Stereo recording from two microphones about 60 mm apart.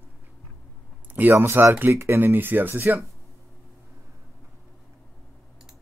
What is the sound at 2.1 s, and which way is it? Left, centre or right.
Speech, right.